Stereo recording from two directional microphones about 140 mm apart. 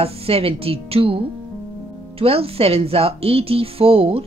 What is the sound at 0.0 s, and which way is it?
Speech, 45° right (ahead or behind).